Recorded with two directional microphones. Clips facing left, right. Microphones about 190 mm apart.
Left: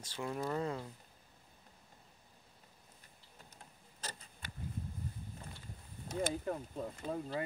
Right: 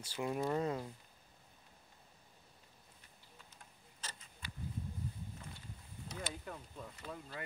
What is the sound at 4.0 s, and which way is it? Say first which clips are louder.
Tick-tock: left 4 dB; 35° left (ahead or behind).